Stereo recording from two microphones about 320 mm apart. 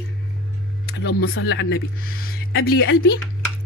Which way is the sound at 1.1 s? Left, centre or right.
Left.